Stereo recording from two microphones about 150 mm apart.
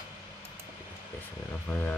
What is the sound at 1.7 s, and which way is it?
Speech, 20° left (ahead or behind).